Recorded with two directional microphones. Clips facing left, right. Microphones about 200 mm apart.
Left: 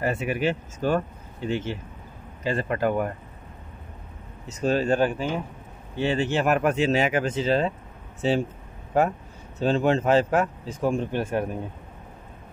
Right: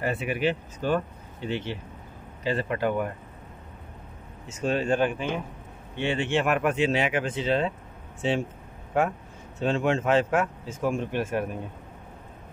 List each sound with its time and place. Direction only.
0.0 s speech: 45° left (ahead or behind)
4.5 s speech: 40° left (ahead or behind)